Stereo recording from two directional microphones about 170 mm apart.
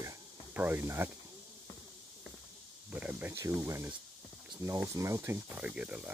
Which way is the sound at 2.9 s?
10° right (ahead or behind).